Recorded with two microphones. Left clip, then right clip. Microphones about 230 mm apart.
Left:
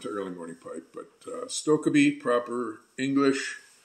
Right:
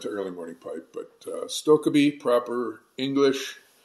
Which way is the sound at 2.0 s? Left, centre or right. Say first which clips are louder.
Right 2 dB; centre.